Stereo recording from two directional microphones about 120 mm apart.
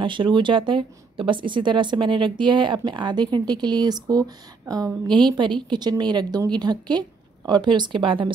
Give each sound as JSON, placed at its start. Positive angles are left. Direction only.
{"t": 0.0, "sound": "speech", "side_deg": -40}